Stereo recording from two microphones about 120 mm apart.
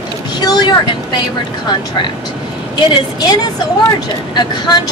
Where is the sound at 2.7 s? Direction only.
35° left (ahead or behind).